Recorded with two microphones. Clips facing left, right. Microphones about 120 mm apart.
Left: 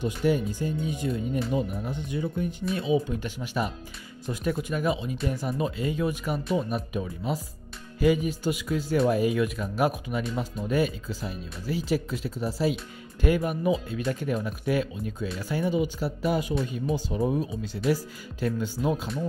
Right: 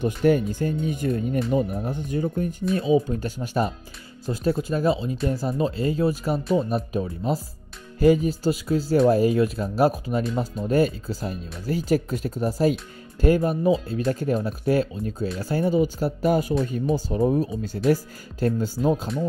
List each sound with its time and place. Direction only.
0.0 s speech: 50° right (ahead or behind)